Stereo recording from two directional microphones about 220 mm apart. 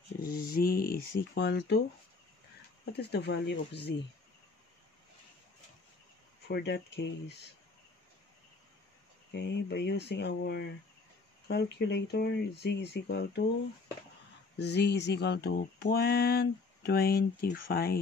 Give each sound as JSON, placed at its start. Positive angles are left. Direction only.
{"t": 0.2, "sound": "mantra", "side_deg": 45}
{"t": 2.8, "sound": "mantra", "side_deg": 50}
{"t": 6.4, "sound": "mantra", "side_deg": 50}
{"t": 9.3, "sound": "mantra", "side_deg": 50}
{"t": 14.6, "sound": "mantra", "side_deg": 50}